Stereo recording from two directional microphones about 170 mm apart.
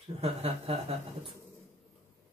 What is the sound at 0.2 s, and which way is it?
Speech, 35° right (ahead or behind).